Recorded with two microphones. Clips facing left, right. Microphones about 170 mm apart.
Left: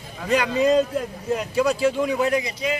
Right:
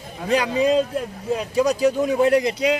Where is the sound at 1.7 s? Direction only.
40° right (ahead or behind).